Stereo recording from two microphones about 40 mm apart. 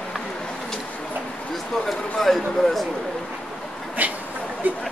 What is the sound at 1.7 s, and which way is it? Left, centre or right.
Speech, centre.